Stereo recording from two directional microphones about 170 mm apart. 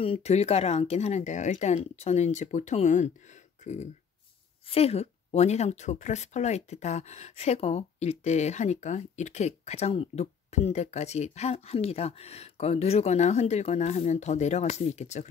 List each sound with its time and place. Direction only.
0.0 s speech: 35° left (ahead or behind)